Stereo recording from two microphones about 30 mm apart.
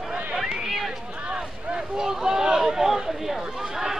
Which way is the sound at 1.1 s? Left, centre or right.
Right.